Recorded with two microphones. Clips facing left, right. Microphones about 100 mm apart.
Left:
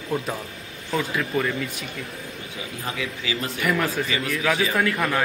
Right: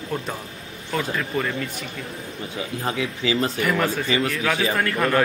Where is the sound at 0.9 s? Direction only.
Centre (ahead or behind).